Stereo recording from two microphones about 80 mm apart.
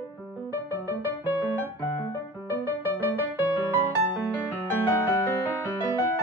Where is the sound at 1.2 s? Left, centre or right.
Right.